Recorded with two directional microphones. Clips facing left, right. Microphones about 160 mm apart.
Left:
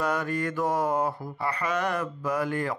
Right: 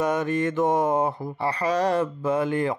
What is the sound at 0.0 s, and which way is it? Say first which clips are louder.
Mantra: right 4 dB; 20° right (ahead or behind).